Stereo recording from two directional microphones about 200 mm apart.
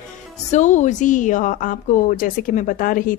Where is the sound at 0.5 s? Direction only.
35° left (ahead or behind).